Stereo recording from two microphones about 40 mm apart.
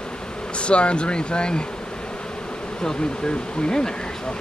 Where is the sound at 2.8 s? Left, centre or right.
Centre.